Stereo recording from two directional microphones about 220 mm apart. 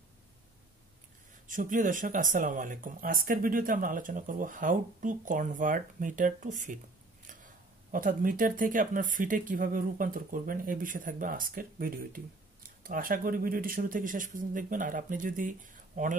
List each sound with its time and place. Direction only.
1.5 s speech: 40° right (ahead or behind)
7.9 s speech: 40° right (ahead or behind)